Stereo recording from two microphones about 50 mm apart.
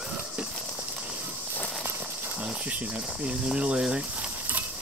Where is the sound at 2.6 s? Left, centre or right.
Right.